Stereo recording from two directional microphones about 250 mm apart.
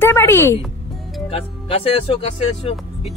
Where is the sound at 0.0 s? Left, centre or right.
Centre.